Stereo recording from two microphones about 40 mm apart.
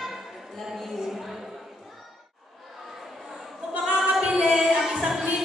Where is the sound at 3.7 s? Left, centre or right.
Right.